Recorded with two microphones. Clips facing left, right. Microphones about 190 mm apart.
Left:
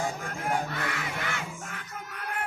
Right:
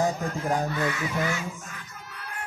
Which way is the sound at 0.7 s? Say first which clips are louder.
Right 6 dB; 60° left (ahead or behind).